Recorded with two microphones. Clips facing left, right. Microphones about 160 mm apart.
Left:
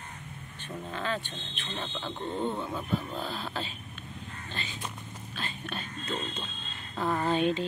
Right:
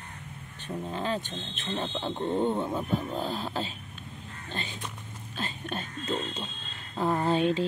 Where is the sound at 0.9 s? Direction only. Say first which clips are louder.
Right 2 dB; 35° right (ahead or behind).